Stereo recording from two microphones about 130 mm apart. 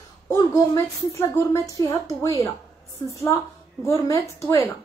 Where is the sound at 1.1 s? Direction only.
25° left (ahead or behind).